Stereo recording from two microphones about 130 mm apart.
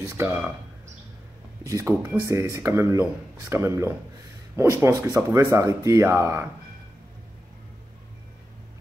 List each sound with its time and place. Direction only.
0.1 s speech: 20° right (ahead or behind)
1.6 s speech: 20° right (ahead or behind)